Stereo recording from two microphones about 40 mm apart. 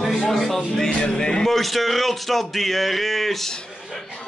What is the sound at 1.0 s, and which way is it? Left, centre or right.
Speech, left.